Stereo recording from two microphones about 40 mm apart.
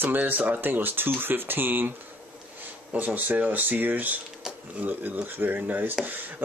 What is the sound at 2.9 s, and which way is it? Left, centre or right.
Speech, right.